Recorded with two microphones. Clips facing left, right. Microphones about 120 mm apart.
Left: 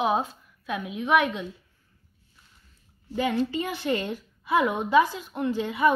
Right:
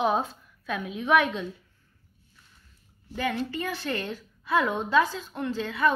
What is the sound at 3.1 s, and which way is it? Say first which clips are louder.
A woman's voice: left 4 dB; 20° left (ahead or behind).